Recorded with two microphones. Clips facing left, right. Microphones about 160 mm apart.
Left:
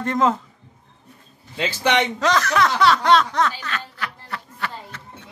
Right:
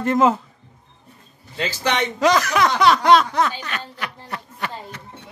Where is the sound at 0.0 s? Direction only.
5° right (ahead or behind).